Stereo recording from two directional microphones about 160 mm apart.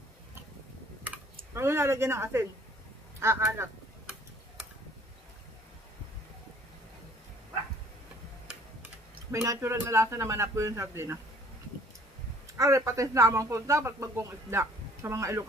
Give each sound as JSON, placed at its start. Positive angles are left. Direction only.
{"t": 1.5, "sound": "speech", "side_deg": -15}
{"t": 9.3, "sound": "speech", "side_deg": -20}
{"t": 12.5, "sound": "speech", "side_deg": -20}